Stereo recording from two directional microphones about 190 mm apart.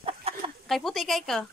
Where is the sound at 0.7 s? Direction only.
Centre (ahead or behind).